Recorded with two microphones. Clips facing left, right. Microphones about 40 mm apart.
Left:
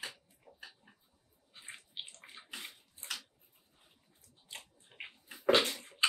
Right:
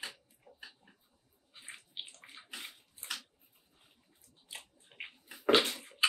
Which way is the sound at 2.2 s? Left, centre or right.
Centre.